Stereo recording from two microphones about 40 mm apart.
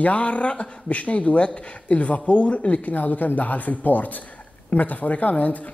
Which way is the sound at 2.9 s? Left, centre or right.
Left.